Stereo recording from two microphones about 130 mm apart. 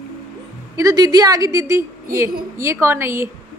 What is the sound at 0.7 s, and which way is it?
A woman's voice, 30° right (ahead or behind).